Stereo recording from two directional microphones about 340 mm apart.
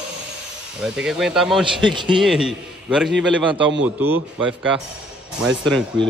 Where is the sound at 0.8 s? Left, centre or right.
Centre.